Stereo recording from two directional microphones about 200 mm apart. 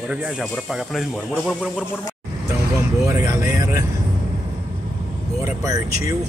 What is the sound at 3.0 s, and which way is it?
Speech, 15° right (ahead or behind).